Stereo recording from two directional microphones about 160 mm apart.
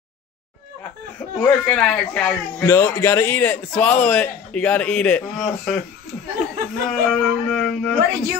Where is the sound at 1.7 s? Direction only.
5° left (ahead or behind).